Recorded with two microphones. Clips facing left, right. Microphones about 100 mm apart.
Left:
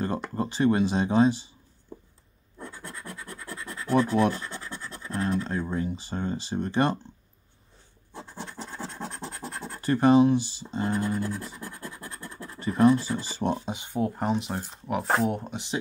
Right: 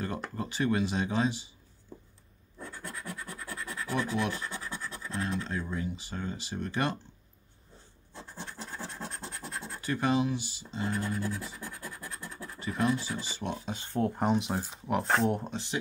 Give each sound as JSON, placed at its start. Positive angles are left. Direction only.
{"t": 0.4, "sound": "speech", "side_deg": 35}
{"t": 2.6, "sound": "scratch", "side_deg": 0}
{"t": 4.1, "sound": "speech", "side_deg": 40}
{"t": 4.5, "sound": "scratch", "side_deg": -5}
{"t": 5.1, "sound": "speech", "side_deg": 40}
{"t": 8.1, "sound": "scratch", "side_deg": 20}
{"t": 8.5, "sound": "scratch", "side_deg": 0}
{"t": 9.8, "sound": "speech", "side_deg": 40}
{"t": 11.0, "sound": "speech", "side_deg": 0}
{"t": 12.5, "sound": "speech", "side_deg": 35}
{"t": 13.7, "sound": "speech", "side_deg": 15}
{"t": 14.0, "sound": "speech", "side_deg": 0}
{"t": 15.5, "sound": "speech", "side_deg": 20}